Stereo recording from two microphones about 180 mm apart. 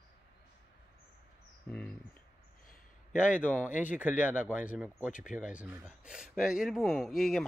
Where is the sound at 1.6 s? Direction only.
5° left (ahead or behind).